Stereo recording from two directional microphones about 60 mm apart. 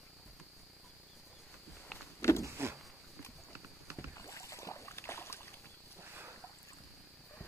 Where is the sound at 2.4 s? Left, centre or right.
Right.